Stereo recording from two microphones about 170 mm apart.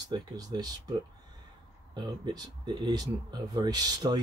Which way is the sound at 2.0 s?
25° right (ahead or behind).